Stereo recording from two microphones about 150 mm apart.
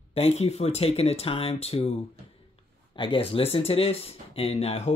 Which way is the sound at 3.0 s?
35° left (ahead or behind).